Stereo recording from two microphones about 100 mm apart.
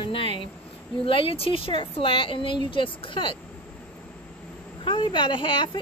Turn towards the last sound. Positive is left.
turn(degrees=55)  # may be behind; listen again after turning